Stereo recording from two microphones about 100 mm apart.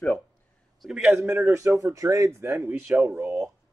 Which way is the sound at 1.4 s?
30° right (ahead or behind).